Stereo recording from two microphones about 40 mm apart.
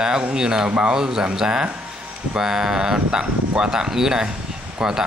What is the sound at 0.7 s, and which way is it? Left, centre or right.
Speech, right.